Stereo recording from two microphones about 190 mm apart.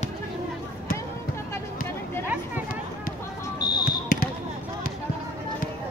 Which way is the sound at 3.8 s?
50° left (ahead or behind).